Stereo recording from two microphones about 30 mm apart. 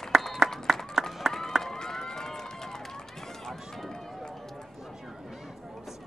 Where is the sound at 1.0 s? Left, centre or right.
Centre.